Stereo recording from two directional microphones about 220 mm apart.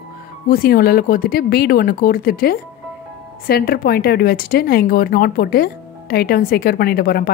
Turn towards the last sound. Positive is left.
turn(degrees=45)  # may be behind; listen again after turning